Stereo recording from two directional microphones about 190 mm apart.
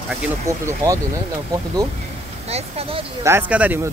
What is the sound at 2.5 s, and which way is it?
Speech, 30° right (ahead or behind).